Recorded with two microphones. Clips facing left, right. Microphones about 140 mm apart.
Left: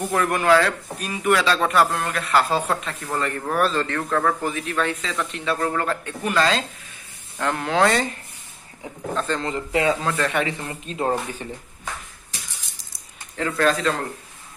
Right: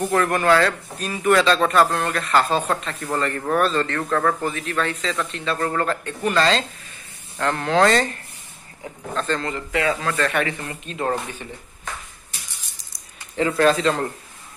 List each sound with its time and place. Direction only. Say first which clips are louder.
0.1 s a man's voice: even; 5° left (ahead or behind)
9.1 s a man's voice: even; 10° left (ahead or behind)
13.4 s speech: right 3 dB; 10° right (ahead or behind)